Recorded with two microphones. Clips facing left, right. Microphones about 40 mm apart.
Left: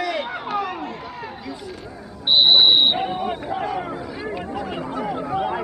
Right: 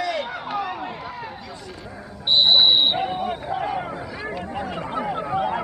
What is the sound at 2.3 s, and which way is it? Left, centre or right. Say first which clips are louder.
Buzzer: left 2 dB; centre.